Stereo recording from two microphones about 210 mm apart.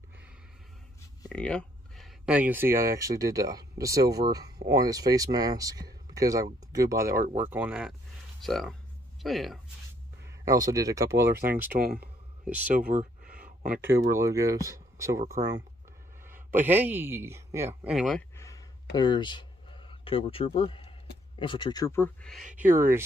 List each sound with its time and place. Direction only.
1.3 s speech: 5° left (ahead or behind)
10.4 s speech: 15° right (ahead or behind)
11.7 s speech: 45° right (ahead or behind)
12.4 s speech: 5° right (ahead or behind)
14.1 s speech: 15° right (ahead or behind)
18.3 s a sound: 15° left (ahead or behind)
18.9 s speech: 20° left (ahead or behind)
22.4 s speech: 40° right (ahead or behind)
22.7 s speech: 10° right (ahead or behind)